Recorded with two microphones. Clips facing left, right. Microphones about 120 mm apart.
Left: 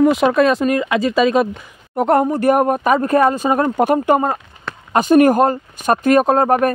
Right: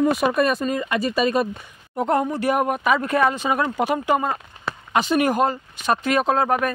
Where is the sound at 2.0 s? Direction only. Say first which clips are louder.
Left 6 dB; 60° left (ahead or behind); by 6.7 s 45° left (ahead or behind).